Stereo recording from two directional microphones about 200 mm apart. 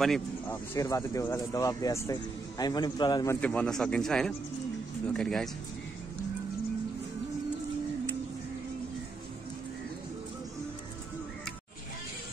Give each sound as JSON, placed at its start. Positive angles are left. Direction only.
{"t": 0.0, "sound": "speech", "side_deg": 0}
{"t": 0.7, "sound": "speech", "side_deg": 15}
{"t": 3.3, "sound": "speech", "side_deg": 5}